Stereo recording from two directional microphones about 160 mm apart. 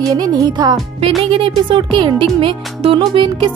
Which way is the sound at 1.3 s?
35° right (ahead or behind).